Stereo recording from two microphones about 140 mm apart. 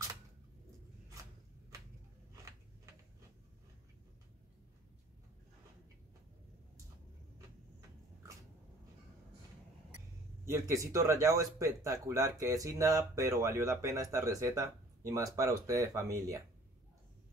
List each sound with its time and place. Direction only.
10.4 s speech: 20° right (ahead or behind)